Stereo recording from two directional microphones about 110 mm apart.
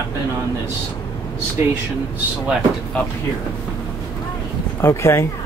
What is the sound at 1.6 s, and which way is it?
Speech, 20° right (ahead or behind).